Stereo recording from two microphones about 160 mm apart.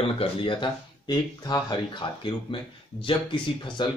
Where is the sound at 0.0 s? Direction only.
35° left (ahead or behind).